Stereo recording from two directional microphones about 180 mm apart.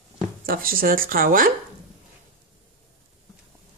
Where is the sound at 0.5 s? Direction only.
55° right (ahead or behind).